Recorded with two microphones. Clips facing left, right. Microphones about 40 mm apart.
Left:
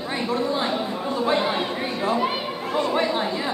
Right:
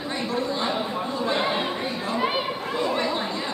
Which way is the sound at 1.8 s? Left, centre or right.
Centre.